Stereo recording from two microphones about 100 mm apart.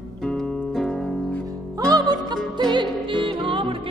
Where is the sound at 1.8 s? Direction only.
40° right (ahead or behind).